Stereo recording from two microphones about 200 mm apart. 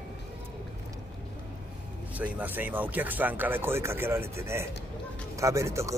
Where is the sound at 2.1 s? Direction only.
10° right (ahead or behind).